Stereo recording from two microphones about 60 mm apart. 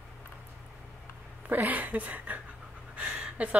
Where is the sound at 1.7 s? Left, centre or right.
Right.